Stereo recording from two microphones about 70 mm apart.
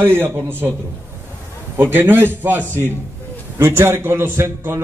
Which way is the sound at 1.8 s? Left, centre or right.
Right.